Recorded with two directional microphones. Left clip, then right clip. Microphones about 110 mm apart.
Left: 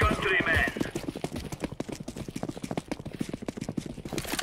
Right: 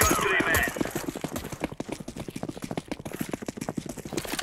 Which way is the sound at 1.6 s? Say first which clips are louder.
Right 3 dB; 35° right (ahead or behind).